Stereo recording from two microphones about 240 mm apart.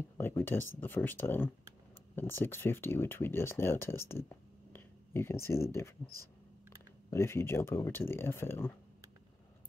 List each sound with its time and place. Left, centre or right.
0.2 s speech: centre
7.1 s speech: centre